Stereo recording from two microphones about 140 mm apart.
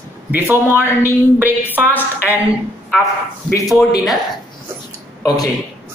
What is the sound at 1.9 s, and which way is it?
Speech, 15° left (ahead or behind).